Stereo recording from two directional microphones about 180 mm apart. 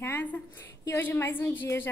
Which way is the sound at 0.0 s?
10° left (ahead or behind).